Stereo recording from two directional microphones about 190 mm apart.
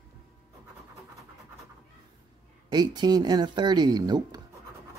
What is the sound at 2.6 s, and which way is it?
Speech, 20° right (ahead or behind).